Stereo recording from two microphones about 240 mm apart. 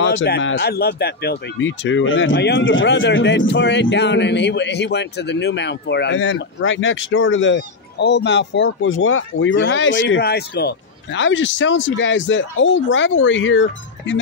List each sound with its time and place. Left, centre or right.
0.0 s speech: left